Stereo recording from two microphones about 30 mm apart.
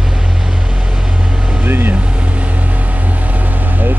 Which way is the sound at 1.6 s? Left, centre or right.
Right.